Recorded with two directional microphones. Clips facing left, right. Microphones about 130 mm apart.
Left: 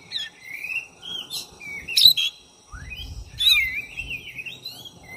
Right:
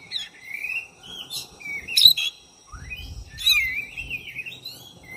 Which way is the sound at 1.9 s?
50° right (ahead or behind).